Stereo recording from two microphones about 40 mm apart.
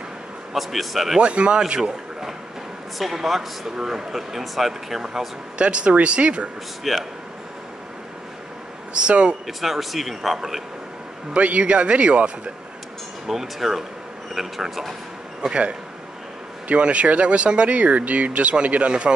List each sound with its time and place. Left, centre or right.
0.5 s speech: centre
1.2 s speech: right
3.0 s speech: centre
5.6 s speech: right
6.8 s speech: centre
8.9 s speech: right
9.5 s speech: centre
11.3 s speech: right
13.3 s speech: centre
16.6 s speech: right